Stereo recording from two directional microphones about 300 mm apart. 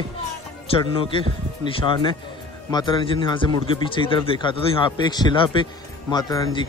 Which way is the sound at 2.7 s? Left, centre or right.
Centre.